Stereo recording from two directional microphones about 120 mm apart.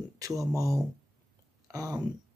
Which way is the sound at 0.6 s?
30° right (ahead or behind).